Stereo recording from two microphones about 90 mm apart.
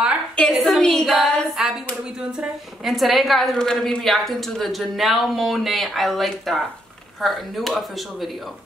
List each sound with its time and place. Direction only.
0.6 s a woman's voice: centre (ahead or behind)
2.8 s a woman's voice: centre (ahead or behind)